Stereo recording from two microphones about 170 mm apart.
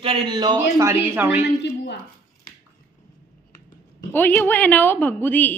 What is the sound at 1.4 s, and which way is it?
Speech, 90° left.